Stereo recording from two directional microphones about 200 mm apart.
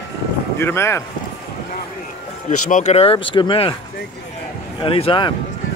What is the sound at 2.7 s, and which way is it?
Speech, 35° left (ahead or behind).